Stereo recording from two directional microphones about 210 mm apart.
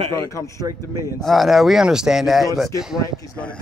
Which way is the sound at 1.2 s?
Centre (ahead or behind).